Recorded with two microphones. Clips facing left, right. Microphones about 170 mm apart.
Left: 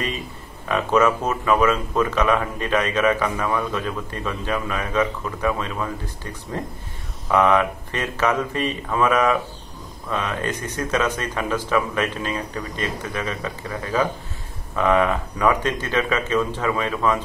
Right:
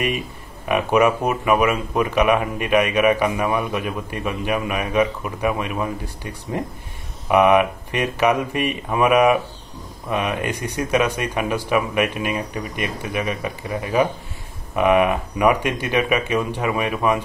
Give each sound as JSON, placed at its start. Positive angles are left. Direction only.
{"t": 0.7, "sound": "speech", "side_deg": -15}